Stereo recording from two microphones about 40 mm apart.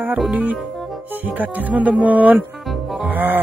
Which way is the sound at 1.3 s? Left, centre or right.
Right.